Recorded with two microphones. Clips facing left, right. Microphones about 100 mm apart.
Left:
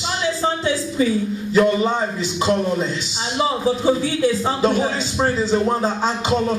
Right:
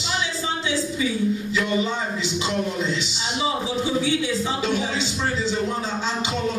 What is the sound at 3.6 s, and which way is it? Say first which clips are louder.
A man's voice: left 5 dB; 45° left (ahead or behind).